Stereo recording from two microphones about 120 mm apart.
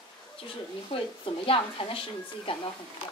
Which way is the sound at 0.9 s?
50° left (ahead or behind).